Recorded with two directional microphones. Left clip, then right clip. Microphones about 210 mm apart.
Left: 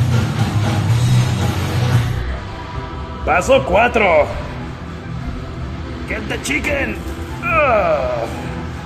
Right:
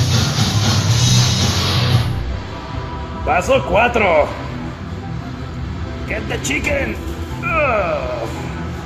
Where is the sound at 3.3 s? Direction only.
5° left (ahead or behind).